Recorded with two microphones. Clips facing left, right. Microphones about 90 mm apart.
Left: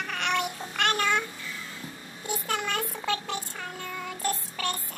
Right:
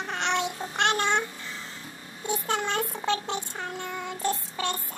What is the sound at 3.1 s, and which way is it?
Child singing, 25° right (ahead or behind).